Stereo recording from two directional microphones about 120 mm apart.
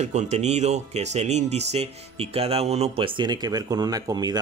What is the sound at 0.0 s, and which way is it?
Speech, 70° right (ahead or behind).